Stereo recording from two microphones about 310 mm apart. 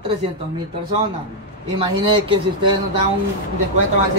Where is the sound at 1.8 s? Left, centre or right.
Centre.